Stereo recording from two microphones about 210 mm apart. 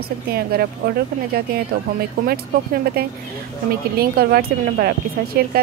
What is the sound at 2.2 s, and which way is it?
Speech, 45° right (ahead or behind).